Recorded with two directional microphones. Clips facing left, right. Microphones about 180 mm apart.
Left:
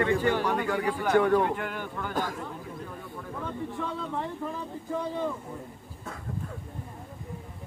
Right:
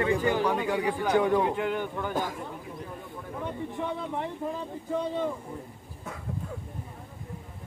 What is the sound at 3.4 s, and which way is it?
Speech, 20° right (ahead or behind).